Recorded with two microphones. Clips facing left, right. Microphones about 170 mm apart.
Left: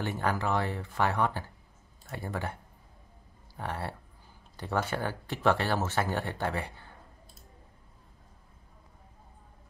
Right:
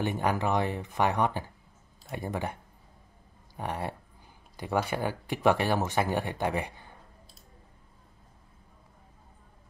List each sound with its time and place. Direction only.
0.0 s speech: 15° right (ahead or behind)
3.5 s speech: 15° right (ahead or behind)